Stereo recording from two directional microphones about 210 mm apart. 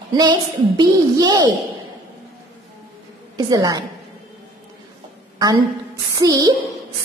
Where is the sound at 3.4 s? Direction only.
15° right (ahead or behind).